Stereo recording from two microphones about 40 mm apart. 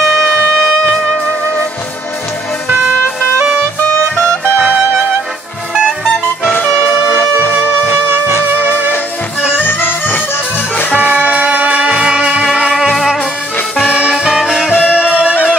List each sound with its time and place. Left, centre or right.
0.2 s shofar: centre
9.6 s music: left
11.0 s music: right
11.9 s music: right
12.9 s music: centre
13.8 s music: right
14.7 s music: left
15.0 s music: right